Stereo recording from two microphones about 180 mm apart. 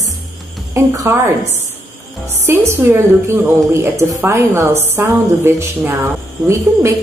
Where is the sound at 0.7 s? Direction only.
20° right (ahead or behind).